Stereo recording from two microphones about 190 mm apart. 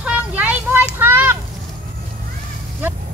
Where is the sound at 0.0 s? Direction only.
5° right (ahead or behind).